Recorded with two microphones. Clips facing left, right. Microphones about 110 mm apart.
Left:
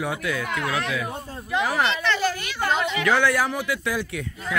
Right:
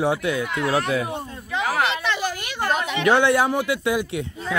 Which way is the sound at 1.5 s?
5° left (ahead or behind).